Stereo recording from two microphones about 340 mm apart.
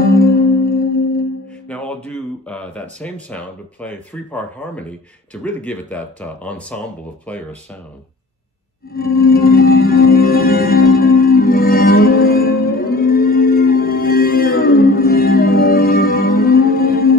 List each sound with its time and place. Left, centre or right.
0.0 s music: left
1.7 s speech: centre
8.9 s music: left